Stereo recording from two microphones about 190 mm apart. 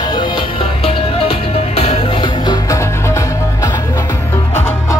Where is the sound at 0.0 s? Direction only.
25° left (ahead or behind).